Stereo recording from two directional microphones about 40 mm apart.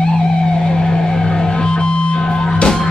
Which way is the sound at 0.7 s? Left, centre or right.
Centre.